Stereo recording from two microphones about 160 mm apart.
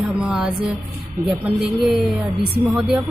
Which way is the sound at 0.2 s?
5° right (ahead or behind).